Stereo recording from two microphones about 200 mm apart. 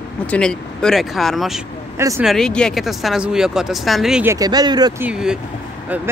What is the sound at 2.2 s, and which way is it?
Speech, centre (ahead or behind).